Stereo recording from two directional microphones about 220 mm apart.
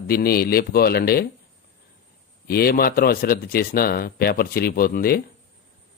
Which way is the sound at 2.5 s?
45° left (ahead or behind).